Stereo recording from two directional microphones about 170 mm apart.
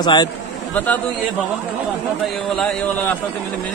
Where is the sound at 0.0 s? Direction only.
25° left (ahead or behind).